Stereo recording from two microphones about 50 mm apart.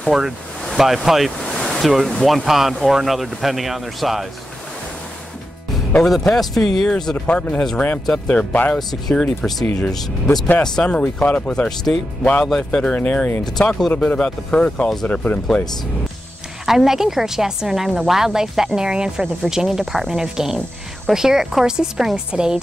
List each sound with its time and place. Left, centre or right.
0.1 s speech: centre
1.4 s a sound: centre
2.0 s speech: centre
6.0 s speech: centre
7.2 s speech: left
9.1 s speech: left
11.2 s speech: left
11.5 s speech: left
12.4 s speech: centre
12.9 s speech: left
13.6 s speech: centre
13.9 s speech: left
15.0 s speech: left
16.6 s speech: centre